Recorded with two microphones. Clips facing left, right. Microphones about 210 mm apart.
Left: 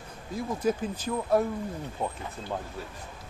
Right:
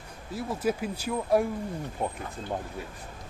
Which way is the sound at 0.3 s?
5° right (ahead or behind).